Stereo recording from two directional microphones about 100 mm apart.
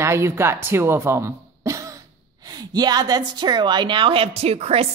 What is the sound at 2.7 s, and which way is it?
A woman's voice, 45° right (ahead or behind).